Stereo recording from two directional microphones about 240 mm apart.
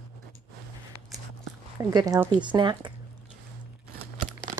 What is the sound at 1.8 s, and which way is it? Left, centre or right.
Speech, centre.